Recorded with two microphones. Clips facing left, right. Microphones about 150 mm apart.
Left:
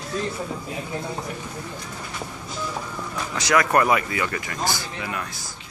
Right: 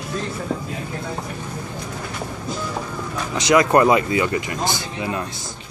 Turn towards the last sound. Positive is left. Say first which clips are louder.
# right 5 dB
turn(degrees=-25)  # may be behind; listen again after turning